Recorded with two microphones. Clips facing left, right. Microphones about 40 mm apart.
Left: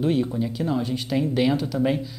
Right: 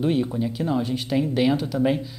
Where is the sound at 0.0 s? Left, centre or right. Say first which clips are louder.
Even; centre.